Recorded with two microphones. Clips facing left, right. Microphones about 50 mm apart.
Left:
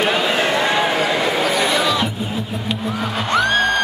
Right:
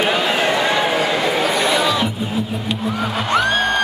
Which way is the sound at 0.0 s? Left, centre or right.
Centre.